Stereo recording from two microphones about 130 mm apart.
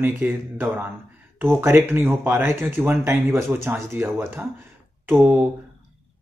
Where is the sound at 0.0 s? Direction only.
15° right (ahead or behind).